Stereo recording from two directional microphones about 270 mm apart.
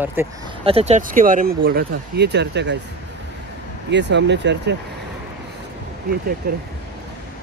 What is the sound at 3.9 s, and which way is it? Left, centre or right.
Speech, right.